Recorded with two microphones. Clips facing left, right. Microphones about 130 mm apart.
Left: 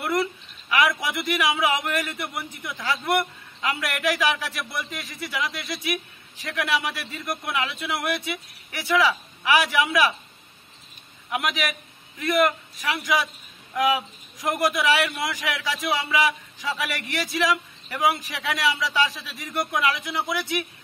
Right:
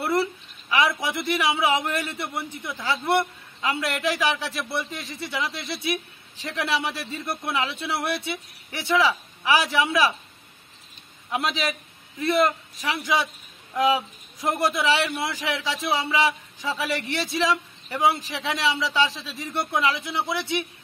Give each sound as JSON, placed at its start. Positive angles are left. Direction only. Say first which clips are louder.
{"t": 0.0, "sound": "a sound", "louder": "right 1 dB", "side_deg": -30}
{"t": 1.0, "sound": "a man's voice", "louder": "even", "side_deg": -30}
{"t": 11.3, "sound": "a man's voice", "louder": "right 1 dB", "side_deg": -30}